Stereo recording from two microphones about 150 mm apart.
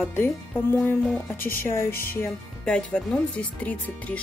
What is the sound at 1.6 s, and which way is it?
Speech, 15° left (ahead or behind).